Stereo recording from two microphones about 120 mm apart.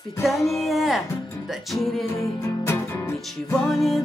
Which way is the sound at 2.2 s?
20° left (ahead or behind).